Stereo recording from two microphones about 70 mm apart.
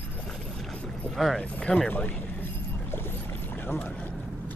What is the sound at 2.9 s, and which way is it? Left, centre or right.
Boat, left.